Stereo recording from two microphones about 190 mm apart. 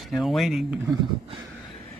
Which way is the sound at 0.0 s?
Centre (ahead or behind).